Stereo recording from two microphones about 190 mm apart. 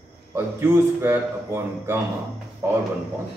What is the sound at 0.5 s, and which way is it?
A man's voice, 15° right (ahead or behind).